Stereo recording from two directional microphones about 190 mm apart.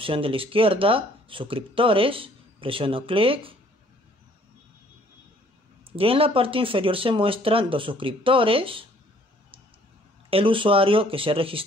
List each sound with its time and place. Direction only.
0.0 s speech: 30° right (ahead or behind)
5.9 s speech: 30° right (ahead or behind)
10.3 s speech: 25° right (ahead or behind)